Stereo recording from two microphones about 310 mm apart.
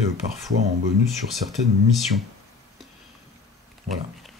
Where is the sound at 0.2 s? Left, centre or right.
Right.